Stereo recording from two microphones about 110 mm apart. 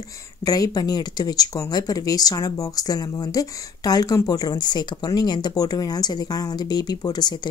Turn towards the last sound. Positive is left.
turn(degrees=40)  # may be behind; listen again after turning